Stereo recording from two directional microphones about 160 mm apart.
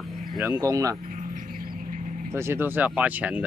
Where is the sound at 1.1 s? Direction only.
65° right (ahead or behind).